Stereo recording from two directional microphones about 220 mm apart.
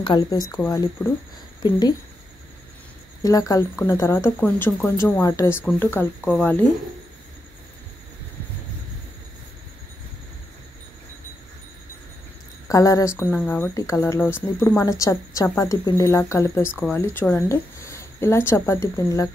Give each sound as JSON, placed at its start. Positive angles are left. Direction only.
{"t": 0.0, "sound": "speech", "side_deg": 20}
{"t": 3.2, "sound": "speech", "side_deg": 15}
{"t": 12.6, "sound": "speech", "side_deg": 15}